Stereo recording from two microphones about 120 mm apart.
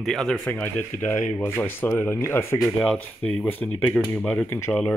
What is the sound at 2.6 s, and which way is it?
Speech, 5° left (ahead or behind).